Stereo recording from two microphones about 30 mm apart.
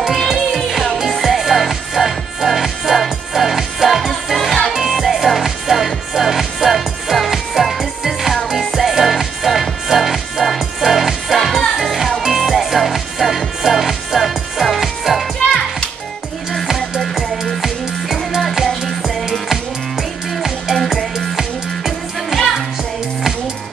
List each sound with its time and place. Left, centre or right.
0.1 s music: centre
16.6 s music: centre
19.5 s music: centre
20.7 s music: centre
21.4 s music: centre